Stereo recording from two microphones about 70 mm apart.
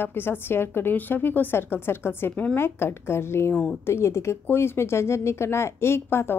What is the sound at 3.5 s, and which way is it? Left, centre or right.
Speech, centre.